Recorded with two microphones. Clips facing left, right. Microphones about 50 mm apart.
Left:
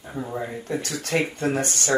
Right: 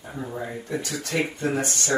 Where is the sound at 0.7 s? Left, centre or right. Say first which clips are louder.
Left 3 dB; left.